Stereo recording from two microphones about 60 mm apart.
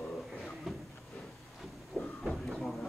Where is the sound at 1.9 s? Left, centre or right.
Centre.